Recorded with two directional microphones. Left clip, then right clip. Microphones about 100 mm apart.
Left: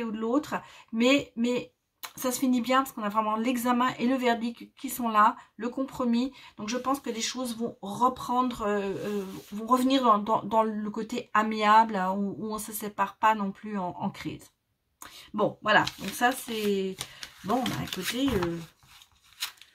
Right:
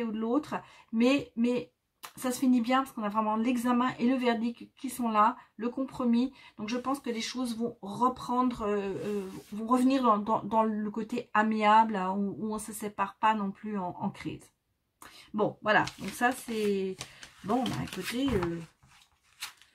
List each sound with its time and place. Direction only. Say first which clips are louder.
0.0 s speech: left 2 dB; 25° left (ahead or behind)